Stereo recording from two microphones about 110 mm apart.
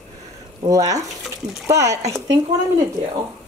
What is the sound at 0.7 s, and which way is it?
A woman's voice, 30° right (ahead or behind).